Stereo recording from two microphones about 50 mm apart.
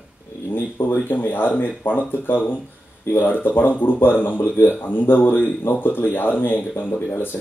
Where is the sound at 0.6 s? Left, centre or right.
Left.